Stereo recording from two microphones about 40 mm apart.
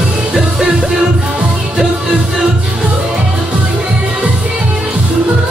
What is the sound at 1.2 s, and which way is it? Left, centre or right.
Music, right.